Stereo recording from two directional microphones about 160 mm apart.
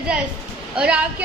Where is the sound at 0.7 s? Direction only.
5° right (ahead or behind).